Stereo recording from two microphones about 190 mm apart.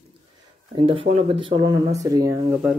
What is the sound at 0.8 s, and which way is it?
Speech, 30° right (ahead or behind).